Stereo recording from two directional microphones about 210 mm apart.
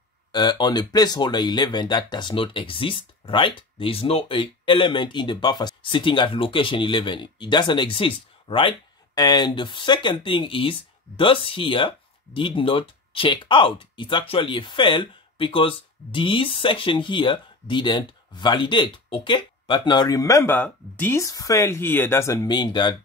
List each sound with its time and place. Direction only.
0.3 s speech: 20° left (ahead or behind)